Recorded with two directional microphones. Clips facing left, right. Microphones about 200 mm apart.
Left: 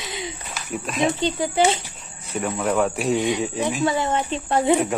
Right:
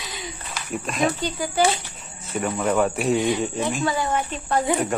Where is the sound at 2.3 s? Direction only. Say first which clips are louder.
Even; centre (ahead or behind).